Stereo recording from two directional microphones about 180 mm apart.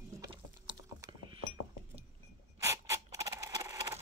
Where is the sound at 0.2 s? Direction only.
25° right (ahead or behind).